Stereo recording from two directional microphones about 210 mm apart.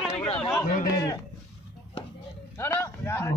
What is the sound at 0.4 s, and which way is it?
Speech, 10° left (ahead or behind).